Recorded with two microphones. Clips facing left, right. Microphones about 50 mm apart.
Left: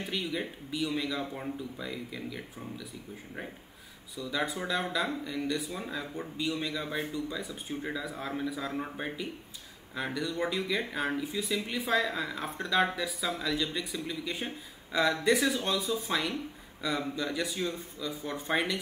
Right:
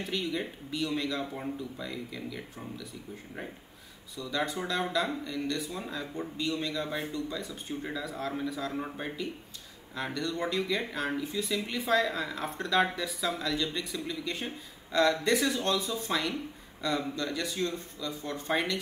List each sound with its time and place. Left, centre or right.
0.0 s speech: centre
4.2 s speech: centre